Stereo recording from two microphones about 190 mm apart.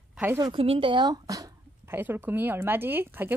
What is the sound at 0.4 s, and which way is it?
A woman's voice, 25° right (ahead or behind).